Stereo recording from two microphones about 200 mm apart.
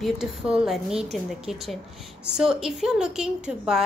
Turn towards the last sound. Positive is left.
turn(degrees=-5)  # may be behind; listen again after turning